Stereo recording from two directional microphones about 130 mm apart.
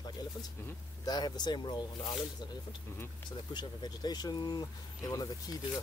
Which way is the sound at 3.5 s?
35° left (ahead or behind).